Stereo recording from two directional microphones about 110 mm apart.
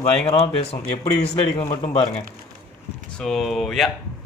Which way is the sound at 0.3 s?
60° left (ahead or behind).